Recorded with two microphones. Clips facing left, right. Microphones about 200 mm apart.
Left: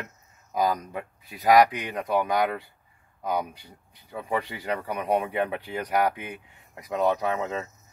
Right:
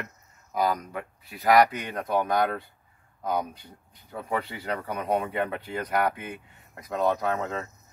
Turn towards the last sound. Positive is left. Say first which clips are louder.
# left 1 dB
turn(degrees=10)  # may be behind; listen again after turning